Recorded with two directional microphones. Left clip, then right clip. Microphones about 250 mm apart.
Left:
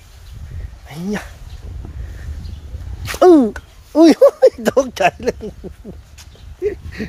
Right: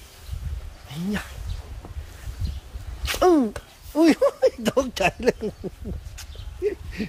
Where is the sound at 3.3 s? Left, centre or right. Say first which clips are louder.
Left 10 dB; left.